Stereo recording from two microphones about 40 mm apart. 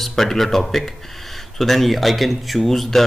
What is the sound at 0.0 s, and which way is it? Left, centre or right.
A man's voice, centre.